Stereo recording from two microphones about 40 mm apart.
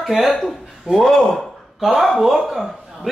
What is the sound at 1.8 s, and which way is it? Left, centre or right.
Speech, centre.